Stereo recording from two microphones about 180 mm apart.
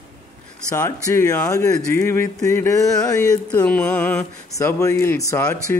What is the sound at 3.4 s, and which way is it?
Mantra, 5° left (ahead or behind).